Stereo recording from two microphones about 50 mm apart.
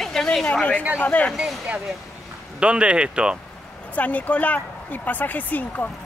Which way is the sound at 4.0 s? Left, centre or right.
Left.